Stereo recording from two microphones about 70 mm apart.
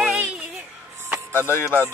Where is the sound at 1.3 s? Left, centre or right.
Left.